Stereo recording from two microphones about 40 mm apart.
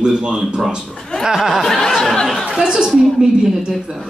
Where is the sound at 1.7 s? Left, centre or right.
Centre.